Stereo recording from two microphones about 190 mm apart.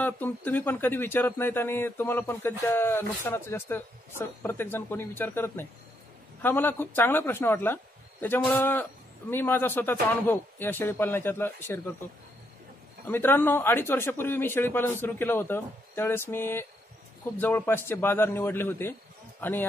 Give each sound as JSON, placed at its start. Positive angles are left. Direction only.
{"t": 0.0, "sound": "speech", "side_deg": 10}
{"t": 13.0, "sound": "speech", "side_deg": 10}